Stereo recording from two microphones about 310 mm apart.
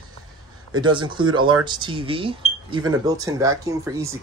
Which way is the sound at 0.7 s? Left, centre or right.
Centre.